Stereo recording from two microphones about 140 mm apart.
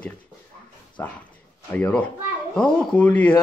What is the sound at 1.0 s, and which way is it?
Speech, 15° left (ahead or behind).